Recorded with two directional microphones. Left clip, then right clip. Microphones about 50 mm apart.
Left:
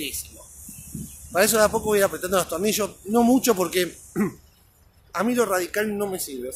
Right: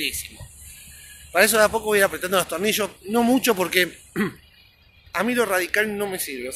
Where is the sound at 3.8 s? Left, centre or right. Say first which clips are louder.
Right 3 dB; left.